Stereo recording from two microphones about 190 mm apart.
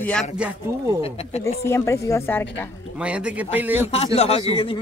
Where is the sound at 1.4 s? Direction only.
15° left (ahead or behind).